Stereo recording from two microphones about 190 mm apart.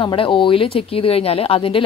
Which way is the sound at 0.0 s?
25° left (ahead or behind).